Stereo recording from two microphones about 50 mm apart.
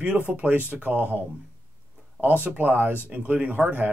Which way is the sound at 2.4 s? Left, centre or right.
Right.